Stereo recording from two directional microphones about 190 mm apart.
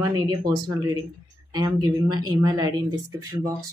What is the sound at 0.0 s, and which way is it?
Speech, 20° right (ahead or behind).